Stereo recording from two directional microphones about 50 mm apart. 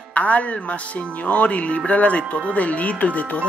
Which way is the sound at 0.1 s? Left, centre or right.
Left.